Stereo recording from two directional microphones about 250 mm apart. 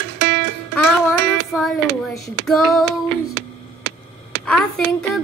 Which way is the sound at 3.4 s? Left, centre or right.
Right.